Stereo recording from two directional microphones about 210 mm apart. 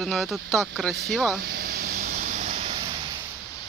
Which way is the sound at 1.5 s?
50° right (ahead or behind).